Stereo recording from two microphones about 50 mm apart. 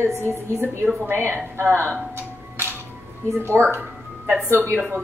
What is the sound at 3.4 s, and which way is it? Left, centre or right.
Speech, right.